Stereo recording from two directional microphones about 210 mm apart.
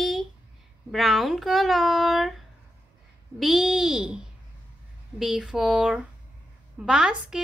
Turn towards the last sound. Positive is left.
turn(degrees=-5)  # may be behind; listen again after turning